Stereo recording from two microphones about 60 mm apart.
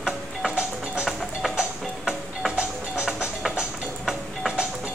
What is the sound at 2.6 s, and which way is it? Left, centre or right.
Music, centre.